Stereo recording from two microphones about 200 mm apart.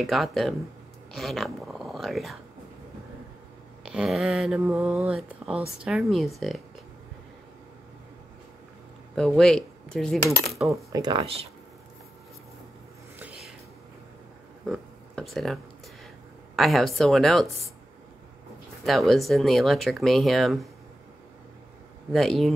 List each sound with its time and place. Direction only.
0.0 s speech: centre (ahead or behind)
3.8 s speech: 5° right (ahead or behind)
9.1 s cutlery: 5° left (ahead or behind)
10.7 s speech: 20° right (ahead or behind)
14.7 s a sound: centre (ahead or behind)
16.5 s speech: centre (ahead or behind)
18.9 s speech: centre (ahead or behind)
22.1 s speech: centre (ahead or behind)